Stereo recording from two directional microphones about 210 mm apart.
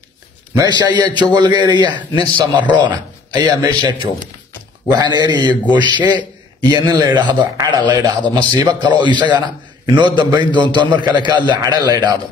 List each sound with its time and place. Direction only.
0.6 s a man's voice: 20° right (ahead or behind)